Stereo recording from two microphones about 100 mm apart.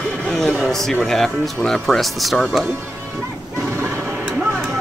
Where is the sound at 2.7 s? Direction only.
15° right (ahead or behind).